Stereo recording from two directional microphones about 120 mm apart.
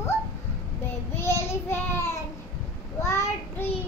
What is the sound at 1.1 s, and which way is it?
Child singing, 20° left (ahead or behind).